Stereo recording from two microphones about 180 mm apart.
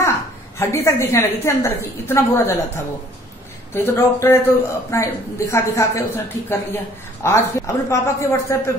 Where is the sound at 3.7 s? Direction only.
15° left (ahead or behind).